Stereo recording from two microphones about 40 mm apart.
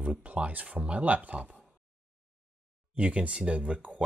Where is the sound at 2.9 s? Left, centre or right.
Right.